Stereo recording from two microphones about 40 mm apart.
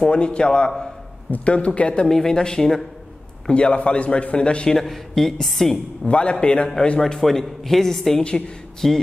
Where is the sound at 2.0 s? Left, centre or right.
Centre.